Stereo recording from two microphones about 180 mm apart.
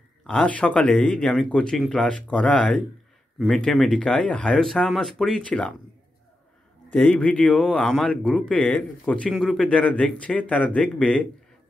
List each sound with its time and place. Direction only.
0.3 s speech: 5° left (ahead or behind)
6.9 s speech: 10° left (ahead or behind)